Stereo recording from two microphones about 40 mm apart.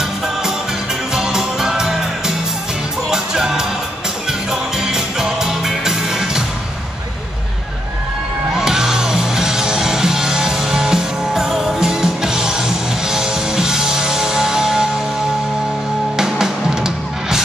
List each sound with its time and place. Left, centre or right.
1.1 s music: centre
8.5 s music: centre
16.2 s music: centre